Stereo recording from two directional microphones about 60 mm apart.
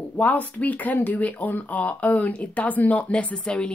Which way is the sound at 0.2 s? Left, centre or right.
Left.